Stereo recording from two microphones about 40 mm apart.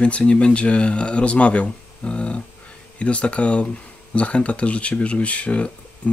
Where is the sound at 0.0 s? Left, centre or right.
Left.